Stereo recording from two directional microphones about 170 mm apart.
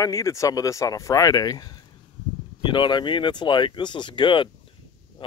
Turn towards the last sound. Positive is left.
turn(degrees=30)  # may be behind; listen again after turning